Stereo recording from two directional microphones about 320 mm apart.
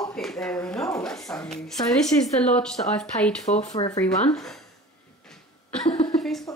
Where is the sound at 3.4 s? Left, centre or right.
Left.